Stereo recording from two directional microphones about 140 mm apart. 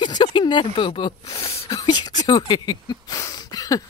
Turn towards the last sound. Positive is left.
turn(degrees=25)  # may be behind; listen again after turning